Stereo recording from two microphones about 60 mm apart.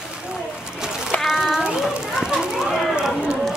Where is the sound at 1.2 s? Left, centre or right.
Centre.